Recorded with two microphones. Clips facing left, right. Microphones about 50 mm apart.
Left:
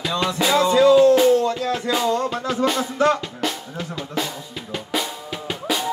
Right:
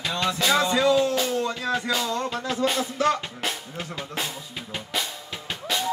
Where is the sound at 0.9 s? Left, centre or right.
Left.